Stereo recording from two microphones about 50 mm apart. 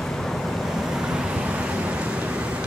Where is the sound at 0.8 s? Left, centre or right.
Centre.